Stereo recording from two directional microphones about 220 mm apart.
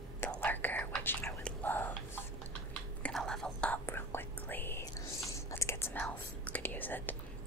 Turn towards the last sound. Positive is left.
turn(degrees=10)  # may be behind; listen again after turning